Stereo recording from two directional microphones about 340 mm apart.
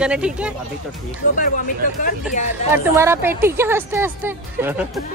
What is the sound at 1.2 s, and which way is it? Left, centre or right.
Speech, left.